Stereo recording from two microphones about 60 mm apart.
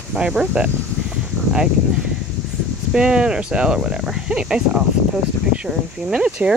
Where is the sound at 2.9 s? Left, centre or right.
Centre.